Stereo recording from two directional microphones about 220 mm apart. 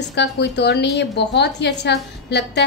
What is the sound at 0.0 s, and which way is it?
A woman's voice, 50° left (ahead or behind).